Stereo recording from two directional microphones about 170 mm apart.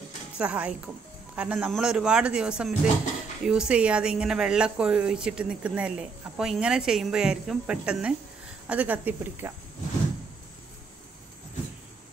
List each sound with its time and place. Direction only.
0.4 s a woman's voice: 5° right (ahead or behind)